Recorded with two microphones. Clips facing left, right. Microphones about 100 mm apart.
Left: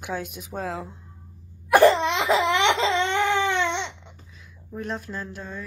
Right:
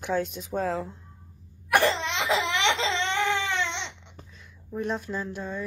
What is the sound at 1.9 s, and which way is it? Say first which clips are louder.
Laughter: left 6 dB; 50° left (ahead or behind).